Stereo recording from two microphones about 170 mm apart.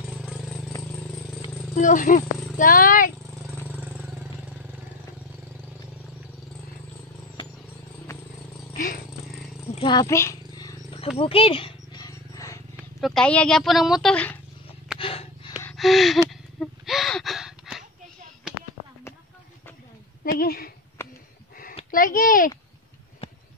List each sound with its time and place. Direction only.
0.1 s vehicle: 5° right (ahead or behind)
1.8 s speech: 50° left (ahead or behind)
3.6 s vehicle: 10° right (ahead or behind)
8.7 s purr: 55° left (ahead or behind)
9.8 s wild animals: 25° left (ahead or behind)
11.1 s a sound: 30° left (ahead or behind)
12.7 s speech: centre (ahead or behind)
15.0 s snort: 30° left (ahead or behind)
15.7 s gasp: centre (ahead or behind)
20.3 s a sound: 65° left (ahead or behind)
21.9 s a sound: 55° left (ahead or behind)